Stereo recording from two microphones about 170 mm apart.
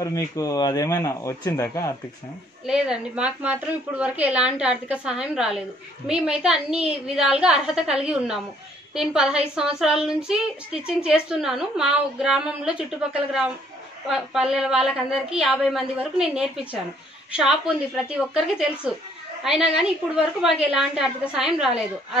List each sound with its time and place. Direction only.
0.0 s a man's voice: 20° left (ahead or behind)
2.6 s speech: 5° right (ahead or behind)